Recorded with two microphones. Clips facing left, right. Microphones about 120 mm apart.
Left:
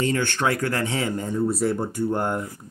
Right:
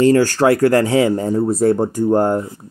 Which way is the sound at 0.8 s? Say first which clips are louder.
Right 11 dB; 90° right.